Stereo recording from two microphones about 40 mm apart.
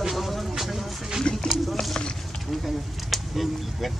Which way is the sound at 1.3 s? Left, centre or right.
Left.